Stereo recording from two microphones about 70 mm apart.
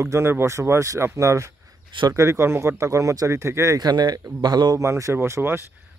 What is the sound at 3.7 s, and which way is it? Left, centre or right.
Speech, right.